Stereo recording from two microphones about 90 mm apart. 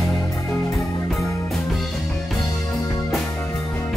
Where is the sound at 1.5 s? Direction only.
5° left (ahead or behind).